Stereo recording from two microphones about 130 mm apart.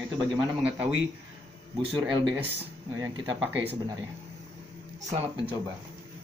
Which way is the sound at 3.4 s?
15° right (ahead or behind).